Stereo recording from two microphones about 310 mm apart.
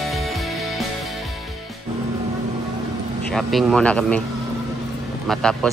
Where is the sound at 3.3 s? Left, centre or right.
Centre.